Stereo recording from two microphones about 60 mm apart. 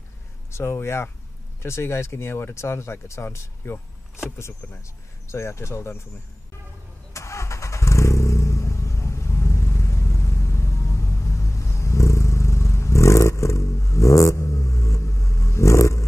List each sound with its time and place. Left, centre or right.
0.5 s speech: left
5.3 s speech: left
7.2 s vehicle: left